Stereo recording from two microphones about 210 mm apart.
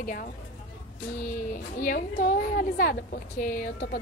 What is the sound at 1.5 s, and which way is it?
A woman's voice, 40° left (ahead or behind).